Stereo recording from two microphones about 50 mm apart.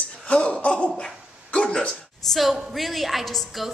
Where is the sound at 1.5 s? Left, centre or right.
Centre.